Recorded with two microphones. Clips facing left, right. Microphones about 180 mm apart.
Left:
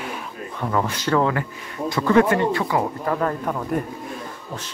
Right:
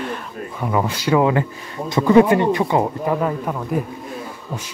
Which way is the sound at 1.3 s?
20° right (ahead or behind).